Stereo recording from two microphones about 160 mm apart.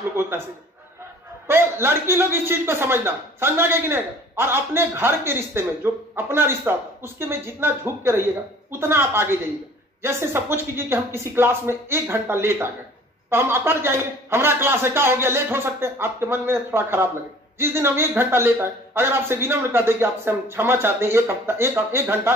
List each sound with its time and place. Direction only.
0.1 s speech: 15° right (ahead or behind)
1.5 s speech: 15° right (ahead or behind)